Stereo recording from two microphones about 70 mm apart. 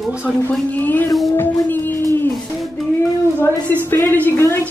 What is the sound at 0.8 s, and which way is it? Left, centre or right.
Speech, left.